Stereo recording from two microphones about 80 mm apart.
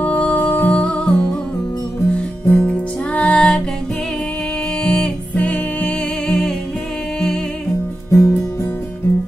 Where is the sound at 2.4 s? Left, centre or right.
Centre.